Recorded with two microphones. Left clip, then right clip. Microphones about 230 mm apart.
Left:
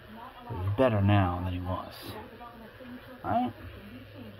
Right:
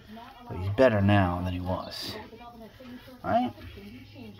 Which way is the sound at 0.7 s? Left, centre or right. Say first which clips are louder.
Right 4 dB; right.